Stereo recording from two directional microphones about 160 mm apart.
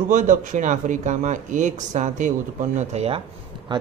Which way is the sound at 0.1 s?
55° right (ahead or behind).